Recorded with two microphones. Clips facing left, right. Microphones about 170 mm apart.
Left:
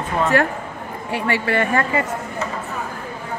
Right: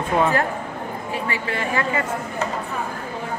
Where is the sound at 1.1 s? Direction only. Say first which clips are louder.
Left 7 dB; 70° left (ahead or behind).